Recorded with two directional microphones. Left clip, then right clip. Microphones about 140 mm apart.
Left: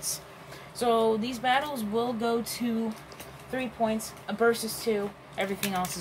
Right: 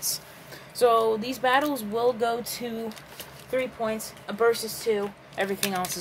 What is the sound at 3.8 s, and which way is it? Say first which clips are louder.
Speech: even; 90° right.